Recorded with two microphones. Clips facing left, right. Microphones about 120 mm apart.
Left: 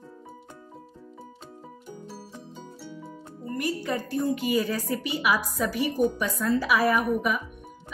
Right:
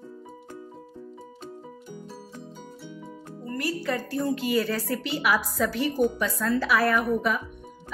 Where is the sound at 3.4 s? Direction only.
15° left (ahead or behind).